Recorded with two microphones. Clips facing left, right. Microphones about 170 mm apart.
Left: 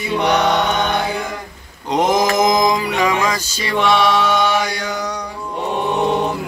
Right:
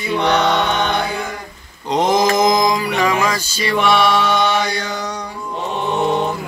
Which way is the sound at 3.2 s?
15° left (ahead or behind).